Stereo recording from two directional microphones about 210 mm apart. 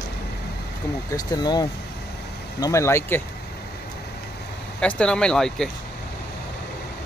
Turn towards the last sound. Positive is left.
turn(degrees=5)  # may be behind; listen again after turning